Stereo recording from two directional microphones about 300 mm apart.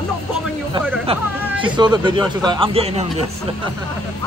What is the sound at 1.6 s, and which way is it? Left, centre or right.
Speech, centre.